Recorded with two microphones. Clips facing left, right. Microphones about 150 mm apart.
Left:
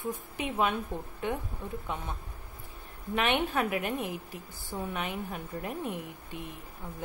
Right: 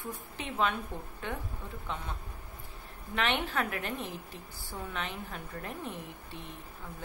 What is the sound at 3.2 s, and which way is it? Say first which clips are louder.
A woman's voice: left 3 dB; 15° left (ahead or behind).